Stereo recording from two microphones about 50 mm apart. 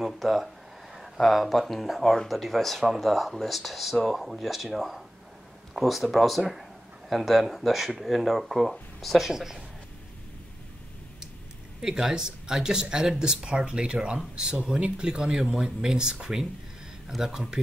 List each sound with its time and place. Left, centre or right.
0.0 s speech: centre
12.0 s speech: centre